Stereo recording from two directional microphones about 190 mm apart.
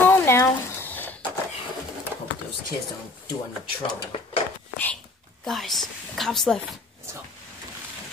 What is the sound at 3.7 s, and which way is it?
Speech, 25° left (ahead or behind).